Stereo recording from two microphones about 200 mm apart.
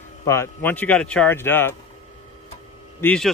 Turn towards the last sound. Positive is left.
turn(degrees=5)  # may be behind; listen again after turning